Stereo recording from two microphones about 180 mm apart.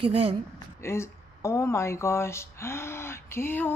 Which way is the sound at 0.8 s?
15° left (ahead or behind).